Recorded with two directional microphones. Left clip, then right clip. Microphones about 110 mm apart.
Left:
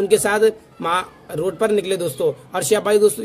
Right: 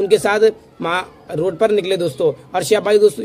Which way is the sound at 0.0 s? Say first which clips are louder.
Right 2 dB; 35° left (ahead or behind).